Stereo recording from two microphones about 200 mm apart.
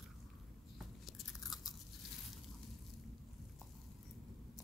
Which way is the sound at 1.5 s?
20° left (ahead or behind).